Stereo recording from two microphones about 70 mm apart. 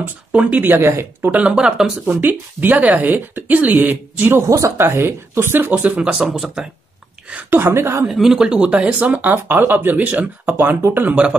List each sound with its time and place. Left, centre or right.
0.0 s speech: right
1.5 s speech: centre
2.0 s speech: right
4.5 s speech: right
4.7 s speech: right
5.9 s speech: centre
7.4 s speech: right
8.1 s speech: centre; by 11.3 s right